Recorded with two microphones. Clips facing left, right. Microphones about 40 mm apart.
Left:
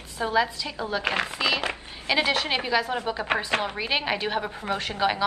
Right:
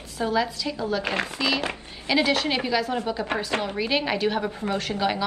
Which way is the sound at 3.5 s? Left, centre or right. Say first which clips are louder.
Left 1 dB; left.